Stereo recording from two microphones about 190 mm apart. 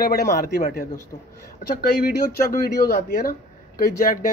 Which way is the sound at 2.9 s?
50° left (ahead or behind).